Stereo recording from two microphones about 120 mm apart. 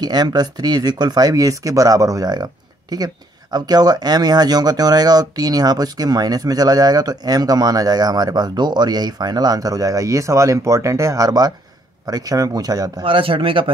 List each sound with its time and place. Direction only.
0.0 s speech: 35° right (ahead or behind)
13.0 s speech: 45° right (ahead or behind)